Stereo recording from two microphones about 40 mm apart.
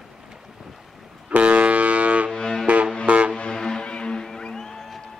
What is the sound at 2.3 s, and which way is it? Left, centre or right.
Music, centre.